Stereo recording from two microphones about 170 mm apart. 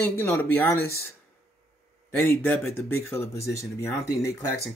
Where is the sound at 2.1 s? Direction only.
15° left (ahead or behind).